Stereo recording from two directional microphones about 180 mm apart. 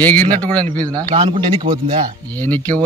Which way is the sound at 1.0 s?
25° right (ahead or behind).